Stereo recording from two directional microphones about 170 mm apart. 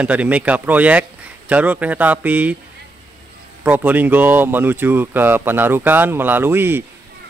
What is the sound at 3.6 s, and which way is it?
A man's voice, 10° right (ahead or behind).